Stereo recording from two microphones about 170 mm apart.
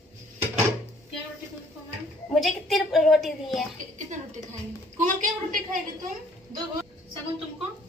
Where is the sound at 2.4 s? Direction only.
Centre (ahead or behind).